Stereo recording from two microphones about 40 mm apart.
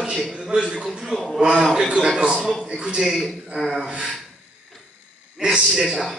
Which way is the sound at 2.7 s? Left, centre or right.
Centre.